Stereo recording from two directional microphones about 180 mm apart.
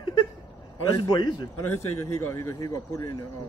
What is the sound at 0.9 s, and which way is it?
A man's voice, 25° left (ahead or behind).